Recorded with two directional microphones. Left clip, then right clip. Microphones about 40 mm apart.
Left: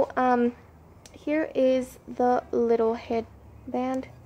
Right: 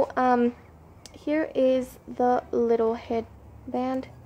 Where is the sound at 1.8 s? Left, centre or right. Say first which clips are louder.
Even; left.